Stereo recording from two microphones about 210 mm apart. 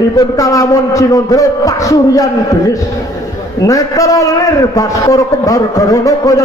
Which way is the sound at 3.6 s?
15° left (ahead or behind).